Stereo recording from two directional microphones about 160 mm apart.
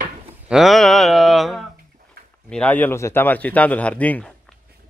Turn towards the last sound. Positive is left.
turn(degrees=10)  # may be behind; listen again after turning